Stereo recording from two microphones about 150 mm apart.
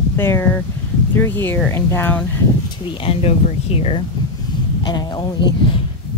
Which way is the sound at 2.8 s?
40° left (ahead or behind).